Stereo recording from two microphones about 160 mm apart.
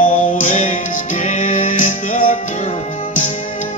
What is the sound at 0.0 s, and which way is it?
Music, 55° left (ahead or behind).